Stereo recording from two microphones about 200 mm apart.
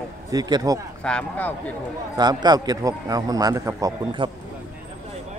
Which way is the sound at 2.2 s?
20° right (ahead or behind).